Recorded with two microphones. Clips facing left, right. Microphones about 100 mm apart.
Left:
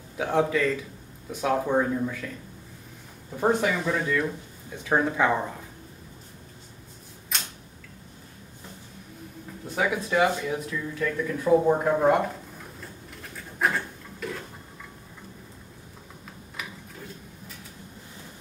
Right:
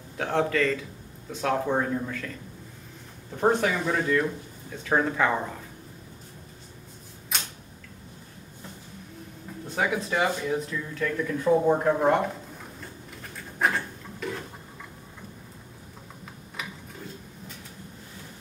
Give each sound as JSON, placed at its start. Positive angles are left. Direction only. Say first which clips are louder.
{"t": 0.2, "sound": "speech", "louder": "left 1 dB", "side_deg": 10}
{"t": 3.3, "sound": "speech", "louder": "even", "side_deg": 5}
{"t": 3.8, "sound": "speech", "louder": "right 1 dB", "side_deg": -10}
{"t": 4.6, "sound": "speech", "louder": "left 1 dB", "side_deg": 10}
{"t": 7.3, "sound": "typewriter", "louder": "right 1 dB", "side_deg": 0}
{"t": 9.8, "sound": "speech", "louder": "left 2 dB", "side_deg": 5}
{"t": 13.6, "sound": "a sound", "louder": "even", "side_deg": 0}